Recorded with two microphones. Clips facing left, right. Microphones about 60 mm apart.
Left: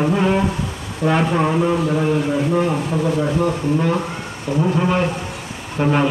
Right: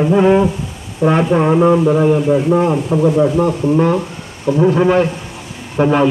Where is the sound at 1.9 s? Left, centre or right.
Right.